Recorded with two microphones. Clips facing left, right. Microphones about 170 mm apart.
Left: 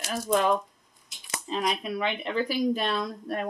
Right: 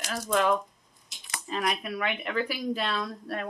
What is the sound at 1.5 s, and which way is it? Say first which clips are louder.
Speech: left 2 dB; 15° left (ahead or behind).